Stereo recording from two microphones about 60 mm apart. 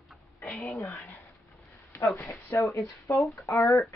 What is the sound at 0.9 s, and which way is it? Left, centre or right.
Speech, left.